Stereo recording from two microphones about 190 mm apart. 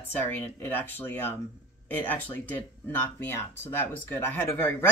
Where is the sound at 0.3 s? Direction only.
10° left (ahead or behind).